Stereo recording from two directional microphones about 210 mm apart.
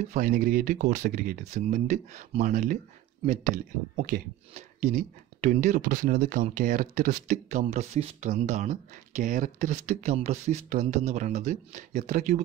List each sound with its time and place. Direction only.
0.1 s speech: 40° right (ahead or behind)